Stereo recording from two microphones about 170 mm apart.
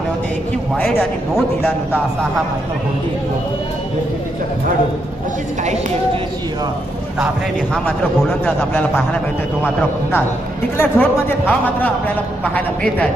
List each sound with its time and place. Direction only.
7.8 s a man's voice: 10° left (ahead or behind)
10.8 s a man's voice: 10° left (ahead or behind)